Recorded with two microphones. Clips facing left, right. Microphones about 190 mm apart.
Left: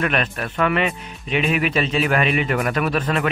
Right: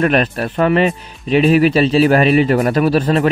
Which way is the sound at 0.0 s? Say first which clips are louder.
Right 8 dB; 35° right (ahead or behind).